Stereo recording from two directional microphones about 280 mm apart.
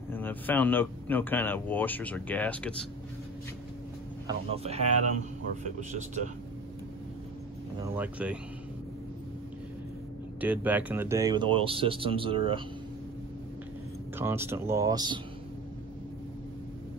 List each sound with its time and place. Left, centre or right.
0.1 s speech: centre
4.3 s a man's voice: right
7.8 s speech: centre
10.4 s speech: centre
14.1 s speech: centre